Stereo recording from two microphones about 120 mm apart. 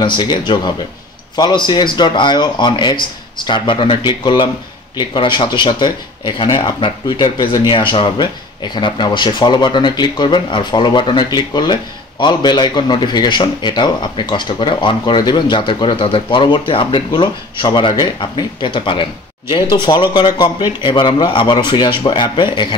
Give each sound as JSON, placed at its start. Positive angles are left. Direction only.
{"t": 0.0, "sound": "speech", "side_deg": 40}